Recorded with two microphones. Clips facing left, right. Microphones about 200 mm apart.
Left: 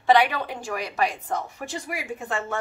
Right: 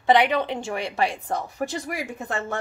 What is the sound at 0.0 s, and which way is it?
A woman's voice, 20° right (ahead or behind).